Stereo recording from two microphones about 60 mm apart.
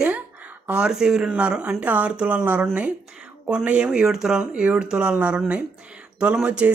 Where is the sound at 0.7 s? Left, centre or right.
Centre.